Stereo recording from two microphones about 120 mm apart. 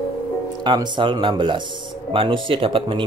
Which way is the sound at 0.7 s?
40° right (ahead or behind).